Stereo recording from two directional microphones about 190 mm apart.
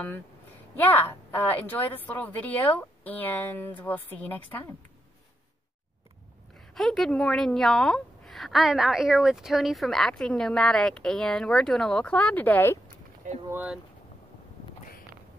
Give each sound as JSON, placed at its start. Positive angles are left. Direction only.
{"t": 0.7, "sound": "a woman's voice", "side_deg": 10}
{"t": 6.7, "sound": "a woman's voice", "side_deg": 0}
{"t": 12.8, "sound": "a sound", "side_deg": -45}
{"t": 13.5, "sound": "speech", "side_deg": -10}